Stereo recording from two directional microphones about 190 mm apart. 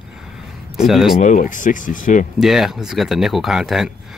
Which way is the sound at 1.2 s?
40° left (ahead or behind).